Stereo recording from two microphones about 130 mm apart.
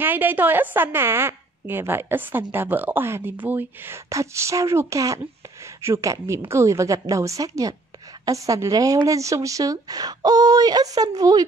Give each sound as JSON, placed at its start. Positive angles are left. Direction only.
{"t": 0.0, "sound": "a woman's voice", "side_deg": -15}